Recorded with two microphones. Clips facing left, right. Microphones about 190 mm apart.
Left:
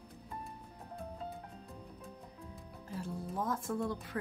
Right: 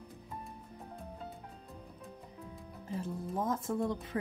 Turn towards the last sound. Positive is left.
turn(degrees=-20)  # may be behind; listen again after turning